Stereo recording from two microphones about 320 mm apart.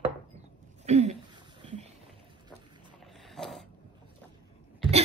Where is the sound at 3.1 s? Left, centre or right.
Centre.